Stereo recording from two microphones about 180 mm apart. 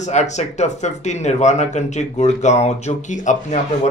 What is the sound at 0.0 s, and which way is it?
Speech, 40° left (ahead or behind).